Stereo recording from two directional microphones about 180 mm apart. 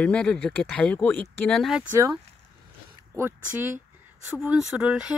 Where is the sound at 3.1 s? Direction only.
15° right (ahead or behind).